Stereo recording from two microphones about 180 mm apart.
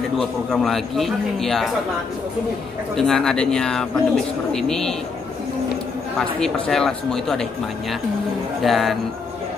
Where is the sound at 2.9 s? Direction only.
Centre (ahead or behind).